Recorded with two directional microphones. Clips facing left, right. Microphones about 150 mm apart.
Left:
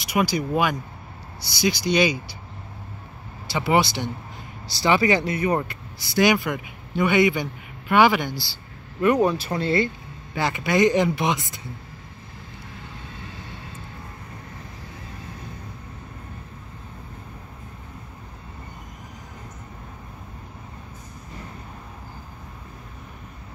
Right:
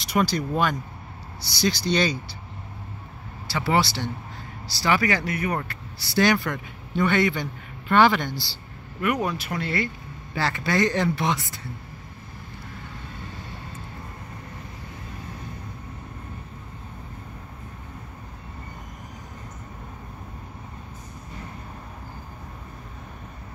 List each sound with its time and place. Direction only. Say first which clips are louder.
0.0 s speech: left 1 dB; 10° left (ahead or behind)
3.4 s speech: left 2 dB; 20° left (ahead or behind)
9.0 s speech: left 6 dB; 25° left (ahead or behind)